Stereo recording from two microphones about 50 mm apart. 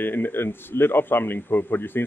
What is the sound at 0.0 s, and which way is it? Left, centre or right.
Speech, left.